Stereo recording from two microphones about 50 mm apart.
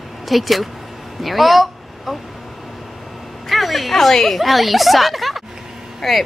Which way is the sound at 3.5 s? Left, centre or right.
Centre.